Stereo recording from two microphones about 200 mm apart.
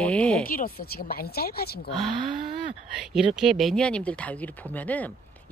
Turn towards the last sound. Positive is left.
turn(degrees=10)  # may be behind; listen again after turning